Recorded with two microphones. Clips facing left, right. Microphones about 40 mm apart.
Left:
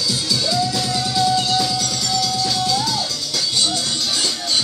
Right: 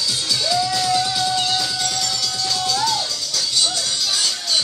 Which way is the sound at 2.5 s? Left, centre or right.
Centre.